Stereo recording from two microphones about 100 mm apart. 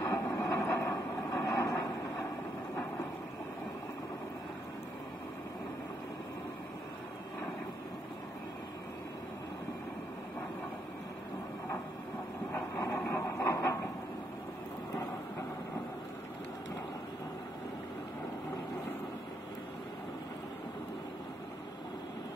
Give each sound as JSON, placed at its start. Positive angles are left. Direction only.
{"t": 0.1, "sound": "vehicle", "side_deg": 30}
{"t": 12.7, "sound": "vehicle", "side_deg": 35}
{"t": 13.1, "sound": "a sound", "side_deg": 30}